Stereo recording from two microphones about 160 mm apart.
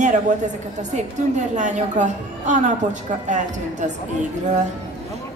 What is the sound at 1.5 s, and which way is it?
A woman's voice, 50° right (ahead or behind).